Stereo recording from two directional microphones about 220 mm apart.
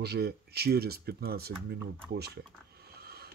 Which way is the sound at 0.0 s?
45° right (ahead or behind).